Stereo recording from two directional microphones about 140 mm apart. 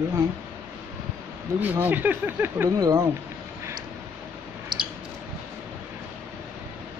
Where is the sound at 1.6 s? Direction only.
10° right (ahead or behind).